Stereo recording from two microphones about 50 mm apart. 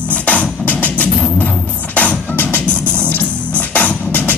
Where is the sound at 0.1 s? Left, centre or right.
Left.